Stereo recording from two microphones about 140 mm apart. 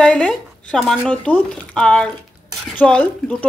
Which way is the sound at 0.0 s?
5° left (ahead or behind).